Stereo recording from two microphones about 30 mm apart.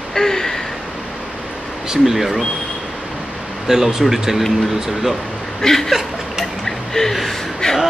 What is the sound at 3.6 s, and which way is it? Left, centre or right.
Speech, centre.